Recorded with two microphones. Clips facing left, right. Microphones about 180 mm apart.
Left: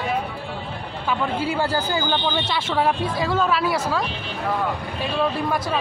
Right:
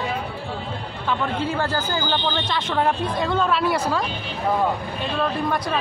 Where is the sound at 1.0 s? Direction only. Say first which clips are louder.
Left 1 dB; 10° left (ahead or behind).